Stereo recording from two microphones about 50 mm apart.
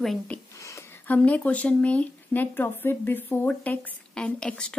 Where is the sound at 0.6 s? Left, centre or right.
Left.